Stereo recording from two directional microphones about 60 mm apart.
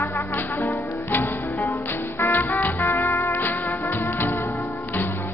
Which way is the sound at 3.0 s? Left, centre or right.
Left.